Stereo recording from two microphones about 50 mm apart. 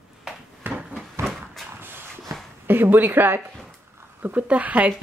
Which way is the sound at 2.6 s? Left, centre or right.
Right.